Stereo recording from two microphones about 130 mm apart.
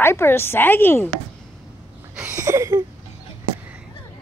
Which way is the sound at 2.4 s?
25° right (ahead or behind).